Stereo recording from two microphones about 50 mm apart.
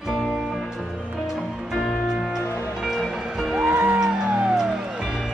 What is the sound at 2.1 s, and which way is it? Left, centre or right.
Music, centre.